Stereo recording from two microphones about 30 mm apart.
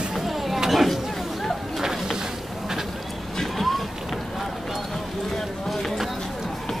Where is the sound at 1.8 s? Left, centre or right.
Centre.